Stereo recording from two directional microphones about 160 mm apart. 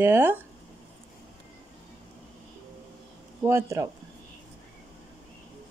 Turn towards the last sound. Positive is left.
turn(degrees=-15)  # may be behind; listen again after turning